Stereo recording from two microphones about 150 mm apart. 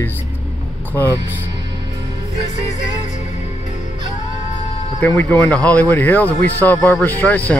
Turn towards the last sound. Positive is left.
turn(degrees=10)  # may be behind; listen again after turning